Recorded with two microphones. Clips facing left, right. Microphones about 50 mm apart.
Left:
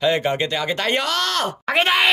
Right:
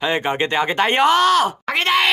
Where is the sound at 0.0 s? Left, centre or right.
Right.